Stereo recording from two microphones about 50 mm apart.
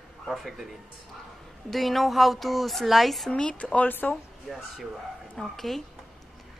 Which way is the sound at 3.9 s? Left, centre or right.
Left.